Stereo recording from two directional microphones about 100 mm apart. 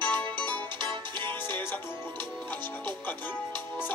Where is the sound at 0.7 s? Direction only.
50° right (ahead or behind).